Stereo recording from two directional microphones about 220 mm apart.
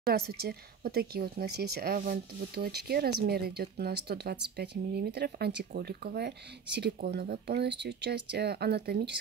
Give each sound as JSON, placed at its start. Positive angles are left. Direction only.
{"t": 0.0, "sound": "speech", "side_deg": -45}